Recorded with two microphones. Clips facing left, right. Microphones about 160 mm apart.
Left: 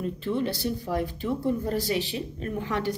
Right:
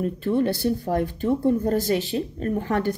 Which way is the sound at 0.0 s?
50° right (ahead or behind).